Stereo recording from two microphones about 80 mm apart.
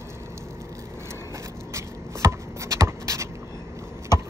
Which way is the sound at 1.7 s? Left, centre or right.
Right.